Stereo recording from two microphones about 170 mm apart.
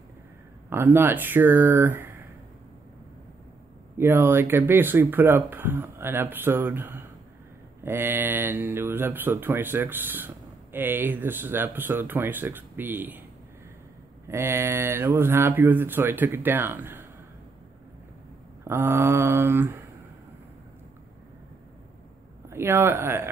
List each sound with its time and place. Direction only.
0.7 s speech: 15° right (ahead or behind)
4.0 s speech: 15° right (ahead or behind)
14.2 s speech: 15° right (ahead or behind)
18.6 s speech: 15° right (ahead or behind)
22.5 s speech: 15° right (ahead or behind)